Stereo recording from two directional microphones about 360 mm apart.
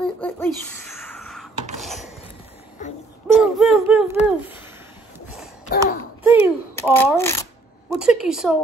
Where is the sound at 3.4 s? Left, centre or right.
Centre.